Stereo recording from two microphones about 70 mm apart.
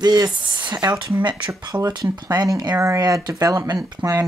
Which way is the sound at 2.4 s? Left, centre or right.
Right.